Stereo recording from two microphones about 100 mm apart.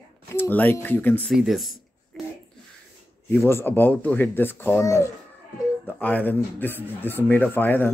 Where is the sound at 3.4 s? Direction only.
20° left (ahead or behind).